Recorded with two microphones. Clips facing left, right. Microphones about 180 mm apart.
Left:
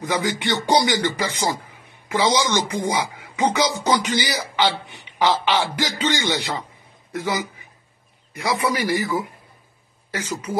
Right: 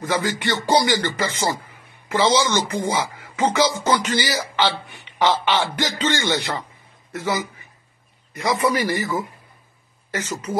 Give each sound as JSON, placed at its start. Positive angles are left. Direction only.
{"t": 0.0, "sound": "speech", "side_deg": 15}
{"t": 8.4, "sound": "speech", "side_deg": 10}
{"t": 10.1, "sound": "speech", "side_deg": 10}